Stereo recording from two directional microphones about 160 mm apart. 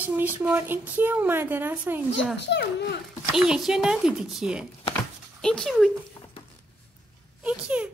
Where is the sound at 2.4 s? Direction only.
90° left.